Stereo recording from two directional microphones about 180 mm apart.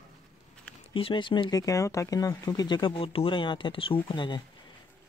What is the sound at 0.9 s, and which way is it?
Speech, 30° left (ahead or behind).